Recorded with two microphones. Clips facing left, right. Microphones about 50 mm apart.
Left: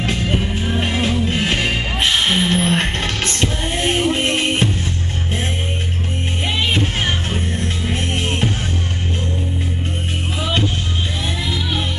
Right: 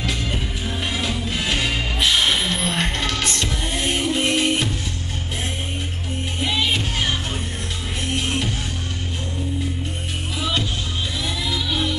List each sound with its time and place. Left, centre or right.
0.0 s music: left
6.4 s music: left
11.4 s music: left